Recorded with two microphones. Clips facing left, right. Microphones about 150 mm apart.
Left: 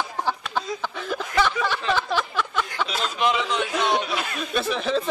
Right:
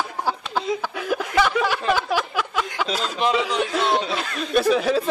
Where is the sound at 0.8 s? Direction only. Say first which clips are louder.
Right 4 dB; 10° right (ahead or behind).